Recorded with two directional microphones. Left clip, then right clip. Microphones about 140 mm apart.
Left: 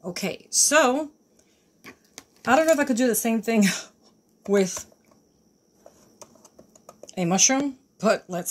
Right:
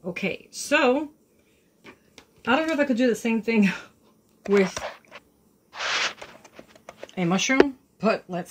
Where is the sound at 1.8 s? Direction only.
65° left (ahead or behind).